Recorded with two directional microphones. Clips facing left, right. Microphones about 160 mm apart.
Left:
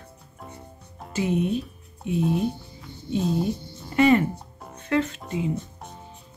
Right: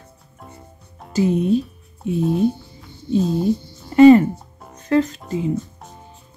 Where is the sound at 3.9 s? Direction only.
35° right (ahead or behind).